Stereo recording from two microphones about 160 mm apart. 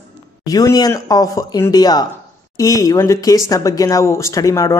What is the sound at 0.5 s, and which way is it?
Speech, 25° left (ahead or behind).